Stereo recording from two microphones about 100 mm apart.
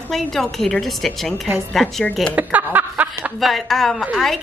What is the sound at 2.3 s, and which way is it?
Speech, 15° right (ahead or behind).